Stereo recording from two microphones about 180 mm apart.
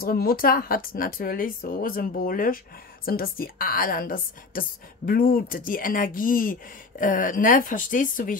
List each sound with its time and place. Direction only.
0.0 s a woman's voice: 55° left (ahead or behind)